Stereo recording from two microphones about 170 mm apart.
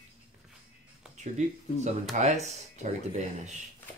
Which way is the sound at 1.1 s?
45° right (ahead or behind).